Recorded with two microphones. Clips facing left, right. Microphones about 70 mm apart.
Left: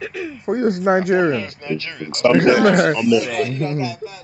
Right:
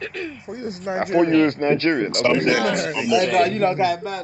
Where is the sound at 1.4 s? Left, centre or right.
Right.